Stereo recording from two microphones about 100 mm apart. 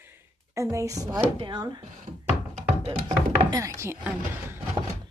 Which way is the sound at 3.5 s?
30° right (ahead or behind).